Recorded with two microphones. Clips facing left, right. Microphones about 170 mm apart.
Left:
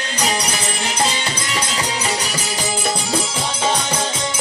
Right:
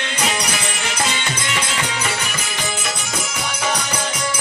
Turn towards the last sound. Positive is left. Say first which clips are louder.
# left 1 dB
turn(degrees=30)  # may be behind; listen again after turning